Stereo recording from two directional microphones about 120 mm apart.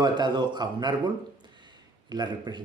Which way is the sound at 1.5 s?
35° right (ahead or behind).